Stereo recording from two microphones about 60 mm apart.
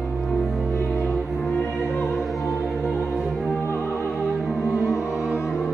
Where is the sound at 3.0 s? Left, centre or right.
Centre.